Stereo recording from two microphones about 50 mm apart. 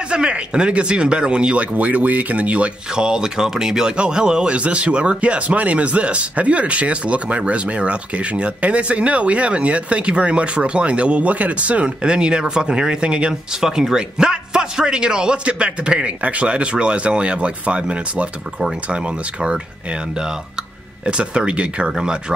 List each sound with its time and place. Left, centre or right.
0.1 s a man's voice: centre
3.0 s a man's voice: centre
13.6 s a man's voice: centre
21.0 s a man's voice: right